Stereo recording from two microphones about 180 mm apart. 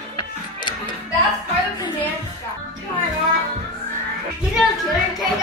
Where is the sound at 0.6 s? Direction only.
25° left (ahead or behind).